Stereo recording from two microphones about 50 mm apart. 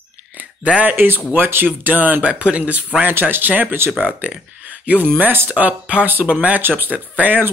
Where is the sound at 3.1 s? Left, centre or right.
Right.